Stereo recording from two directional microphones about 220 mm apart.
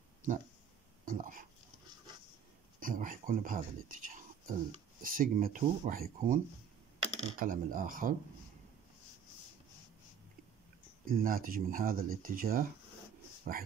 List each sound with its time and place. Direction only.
0.2 s speech: 35° right (ahead or behind)
2.8 s speech: 40° right (ahead or behind)
11.1 s speech: 40° right (ahead or behind)